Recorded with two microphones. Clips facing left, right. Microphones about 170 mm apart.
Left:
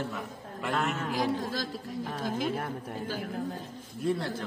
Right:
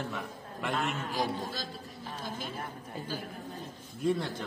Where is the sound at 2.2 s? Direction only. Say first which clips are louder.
Left 9 dB; 90° left.